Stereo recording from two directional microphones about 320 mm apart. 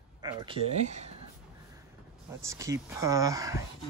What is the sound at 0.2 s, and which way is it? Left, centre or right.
Speech, centre.